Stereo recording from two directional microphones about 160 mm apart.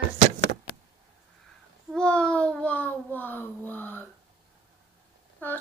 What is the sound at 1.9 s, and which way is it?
A woman's voice, 5° left (ahead or behind).